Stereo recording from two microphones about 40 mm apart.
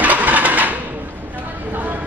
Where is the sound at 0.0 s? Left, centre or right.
Right.